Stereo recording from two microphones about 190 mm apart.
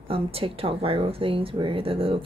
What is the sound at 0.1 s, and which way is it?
Speech, 30° right (ahead or behind).